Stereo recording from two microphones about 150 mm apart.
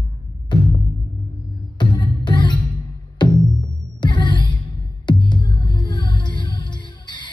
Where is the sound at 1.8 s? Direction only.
30° left (ahead or behind).